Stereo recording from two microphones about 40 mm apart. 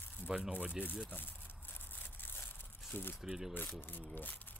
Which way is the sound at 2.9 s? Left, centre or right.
Left.